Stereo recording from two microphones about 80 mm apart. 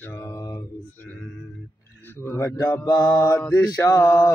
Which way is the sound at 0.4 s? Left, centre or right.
Left.